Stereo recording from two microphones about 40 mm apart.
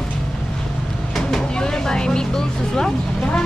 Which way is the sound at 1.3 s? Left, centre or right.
Centre.